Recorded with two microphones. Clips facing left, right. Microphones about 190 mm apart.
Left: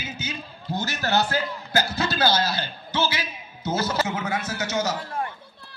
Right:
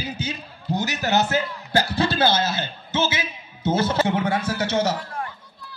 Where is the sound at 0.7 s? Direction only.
15° right (ahead or behind).